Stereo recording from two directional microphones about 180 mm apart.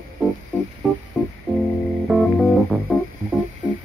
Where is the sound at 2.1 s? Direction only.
Centre (ahead or behind).